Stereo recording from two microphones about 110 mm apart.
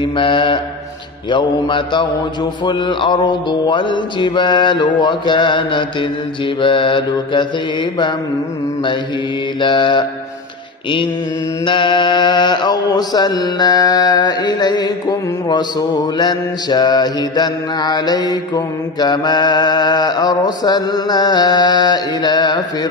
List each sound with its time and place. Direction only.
0.0 s mantra: 50° left (ahead or behind)
9.6 s mantra: 45° left (ahead or behind)
11.6 s mantra: 45° left (ahead or behind)